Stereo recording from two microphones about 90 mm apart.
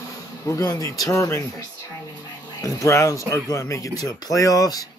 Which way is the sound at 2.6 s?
40° left (ahead or behind).